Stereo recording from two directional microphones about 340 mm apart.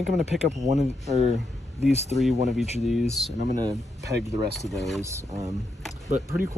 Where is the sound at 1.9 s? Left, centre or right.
Centre.